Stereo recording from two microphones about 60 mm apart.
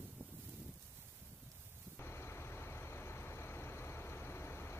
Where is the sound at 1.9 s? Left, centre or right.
Left.